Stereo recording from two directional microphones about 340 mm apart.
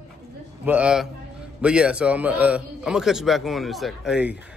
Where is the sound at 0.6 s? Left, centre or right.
Centre.